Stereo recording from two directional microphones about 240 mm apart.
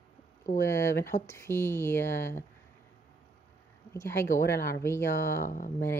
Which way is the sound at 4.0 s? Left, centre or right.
Centre.